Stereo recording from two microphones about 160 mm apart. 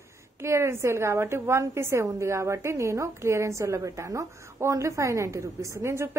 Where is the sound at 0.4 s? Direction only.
15° right (ahead or behind).